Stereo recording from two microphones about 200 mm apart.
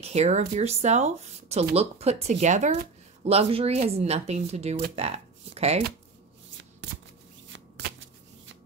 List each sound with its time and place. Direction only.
0.0 s speech: 35° right (ahead or behind)